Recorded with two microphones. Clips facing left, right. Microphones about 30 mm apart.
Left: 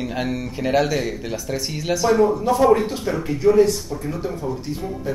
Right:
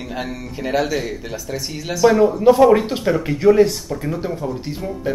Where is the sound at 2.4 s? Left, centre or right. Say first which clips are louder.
Right 5 dB; right.